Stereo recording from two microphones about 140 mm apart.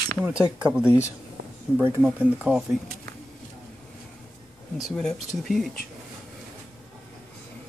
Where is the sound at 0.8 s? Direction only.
20° left (ahead or behind).